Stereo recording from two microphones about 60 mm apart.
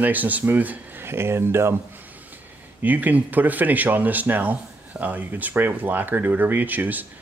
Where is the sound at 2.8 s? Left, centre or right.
Right.